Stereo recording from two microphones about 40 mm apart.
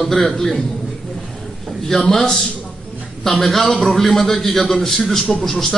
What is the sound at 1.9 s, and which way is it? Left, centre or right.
A man's voice, centre.